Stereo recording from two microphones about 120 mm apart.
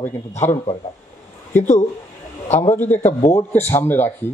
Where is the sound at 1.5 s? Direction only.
75° left (ahead or behind).